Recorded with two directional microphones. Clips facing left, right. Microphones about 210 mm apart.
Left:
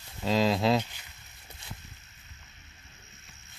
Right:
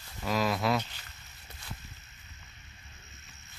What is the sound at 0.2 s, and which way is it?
Speech, 25° left (ahead or behind).